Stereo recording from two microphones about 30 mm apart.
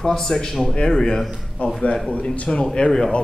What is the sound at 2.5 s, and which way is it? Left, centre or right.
Speech, left.